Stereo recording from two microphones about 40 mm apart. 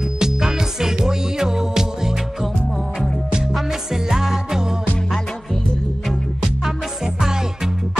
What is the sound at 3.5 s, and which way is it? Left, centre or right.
Music, centre.